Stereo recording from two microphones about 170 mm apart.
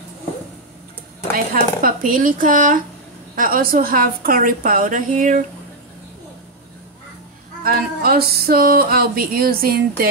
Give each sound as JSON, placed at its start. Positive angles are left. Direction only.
{"t": 1.3, "sound": "speech", "side_deg": -55}
{"t": 3.3, "sound": "music", "side_deg": -55}
{"t": 7.6, "sound": "music", "side_deg": -60}